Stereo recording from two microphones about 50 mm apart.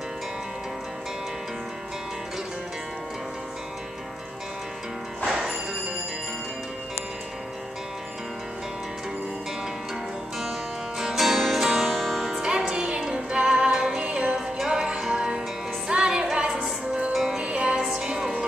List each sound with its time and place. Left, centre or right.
5.2 s music: centre
11.0 s music: centre
12.3 s music: centre